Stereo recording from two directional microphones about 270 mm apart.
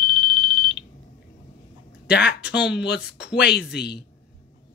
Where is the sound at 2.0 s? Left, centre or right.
Left.